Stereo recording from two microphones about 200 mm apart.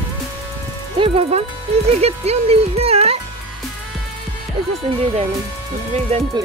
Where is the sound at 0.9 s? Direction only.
30° right (ahead or behind).